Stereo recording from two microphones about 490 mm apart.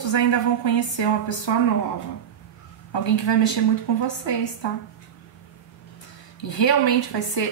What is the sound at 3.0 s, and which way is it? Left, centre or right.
A woman's voice, left.